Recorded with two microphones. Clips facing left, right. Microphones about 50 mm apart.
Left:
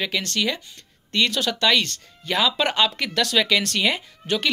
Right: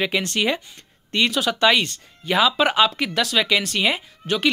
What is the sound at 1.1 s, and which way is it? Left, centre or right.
Speech, centre.